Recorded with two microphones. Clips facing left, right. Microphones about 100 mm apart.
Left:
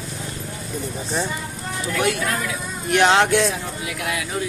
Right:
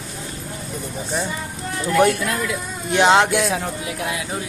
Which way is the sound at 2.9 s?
20° right (ahead or behind).